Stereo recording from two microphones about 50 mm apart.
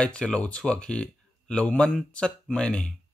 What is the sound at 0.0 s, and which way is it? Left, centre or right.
Speech, centre.